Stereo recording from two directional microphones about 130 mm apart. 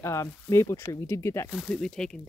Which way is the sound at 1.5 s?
5° left (ahead or behind).